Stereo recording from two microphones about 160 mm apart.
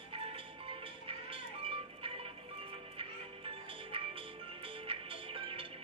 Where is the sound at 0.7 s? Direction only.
35° right (ahead or behind).